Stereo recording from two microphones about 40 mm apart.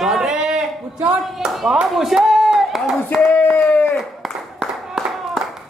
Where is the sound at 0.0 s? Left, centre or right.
Centre.